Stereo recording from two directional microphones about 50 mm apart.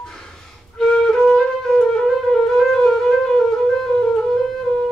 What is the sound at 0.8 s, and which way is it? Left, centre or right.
Music, centre.